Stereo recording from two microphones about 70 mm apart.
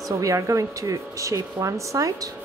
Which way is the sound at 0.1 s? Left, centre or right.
Right.